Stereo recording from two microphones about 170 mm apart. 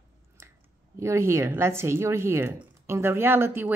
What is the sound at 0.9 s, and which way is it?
Speech, 15° right (ahead or behind).